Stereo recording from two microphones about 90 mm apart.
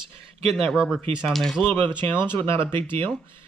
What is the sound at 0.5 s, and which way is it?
Speech, centre (ahead or behind).